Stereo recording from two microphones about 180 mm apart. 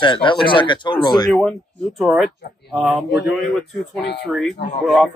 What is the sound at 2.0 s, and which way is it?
Speech, centre (ahead or behind).